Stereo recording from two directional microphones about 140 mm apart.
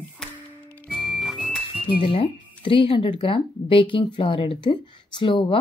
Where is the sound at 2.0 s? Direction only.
40° left (ahead or behind).